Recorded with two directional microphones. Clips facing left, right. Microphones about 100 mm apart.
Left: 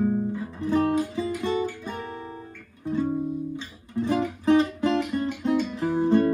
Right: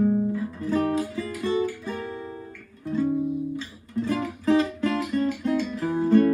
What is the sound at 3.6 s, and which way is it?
Music, 20° left (ahead or behind).